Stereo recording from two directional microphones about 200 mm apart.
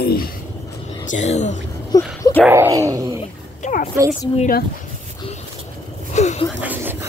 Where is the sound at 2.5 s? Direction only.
15° right (ahead or behind).